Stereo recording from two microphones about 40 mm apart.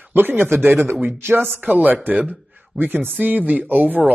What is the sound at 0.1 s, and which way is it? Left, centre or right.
Speech, right.